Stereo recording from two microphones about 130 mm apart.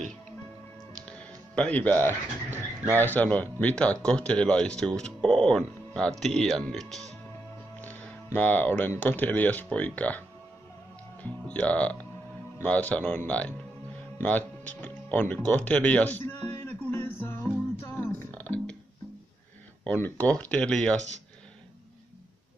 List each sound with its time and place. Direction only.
0.9 s music: 10° left (ahead or behind)
2.9 s speech: 15° left (ahead or behind)
7.8 s speech: 15° left (ahead or behind)
11.2 s speech: 10° left (ahead or behind)
14.1 s music: 10° left (ahead or behind)
19.8 s speech: 10° left (ahead or behind)